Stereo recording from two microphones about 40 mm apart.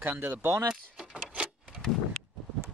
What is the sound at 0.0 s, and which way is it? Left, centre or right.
Speech, right.